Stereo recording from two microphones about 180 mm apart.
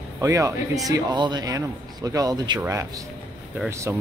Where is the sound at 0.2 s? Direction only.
15° right (ahead or behind).